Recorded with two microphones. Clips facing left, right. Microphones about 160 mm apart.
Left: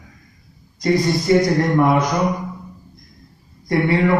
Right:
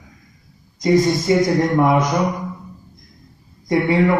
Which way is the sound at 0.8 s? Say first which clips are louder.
Right 2 dB; 20° right (ahead or behind).